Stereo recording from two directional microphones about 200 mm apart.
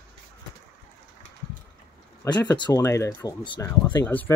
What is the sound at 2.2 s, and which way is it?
Speech, 15° left (ahead or behind).